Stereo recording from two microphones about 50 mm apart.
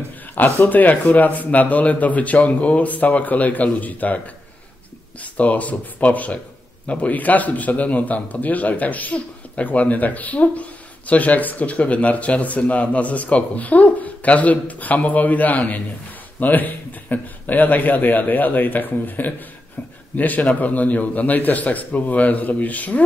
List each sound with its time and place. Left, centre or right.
0.6 s speech: left
5.2 s speech: left